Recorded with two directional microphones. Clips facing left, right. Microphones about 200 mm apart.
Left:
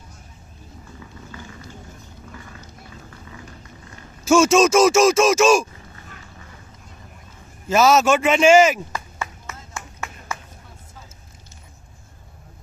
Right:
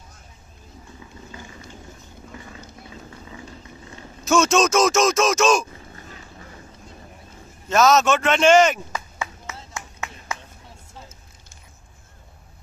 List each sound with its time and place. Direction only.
4.3 s speech: 5° left (ahead or behind)
7.6 s a man's voice: 5° left (ahead or behind)
8.9 s clapping: 15° right (ahead or behind)